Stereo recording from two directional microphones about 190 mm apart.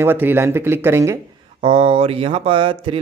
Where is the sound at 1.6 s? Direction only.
30° right (ahead or behind).